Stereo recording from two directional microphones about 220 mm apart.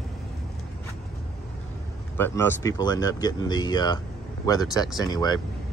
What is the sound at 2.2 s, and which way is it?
Speech, 10° left (ahead or behind).